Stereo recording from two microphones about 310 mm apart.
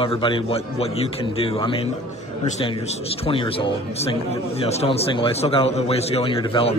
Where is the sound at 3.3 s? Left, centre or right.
Centre.